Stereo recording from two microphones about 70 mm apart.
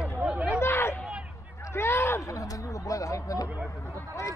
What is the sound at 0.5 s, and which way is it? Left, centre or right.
Chatter, left.